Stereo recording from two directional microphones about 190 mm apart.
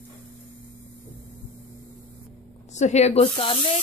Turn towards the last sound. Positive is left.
turn(degrees=30)  # may be behind; listen again after turning